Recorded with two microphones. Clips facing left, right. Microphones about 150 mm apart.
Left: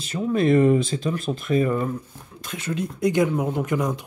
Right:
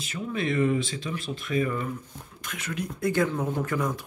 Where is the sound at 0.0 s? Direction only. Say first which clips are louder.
Left 9 dB; 40° left (ahead or behind).